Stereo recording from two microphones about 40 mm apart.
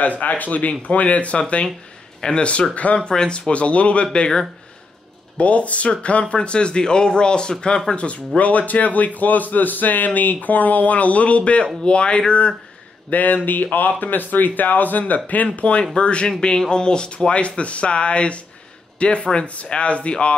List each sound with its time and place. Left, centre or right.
0.2 s speech: left
3.0 s speech: left
5.4 s a man's voice: left
13.1 s a man's voice: left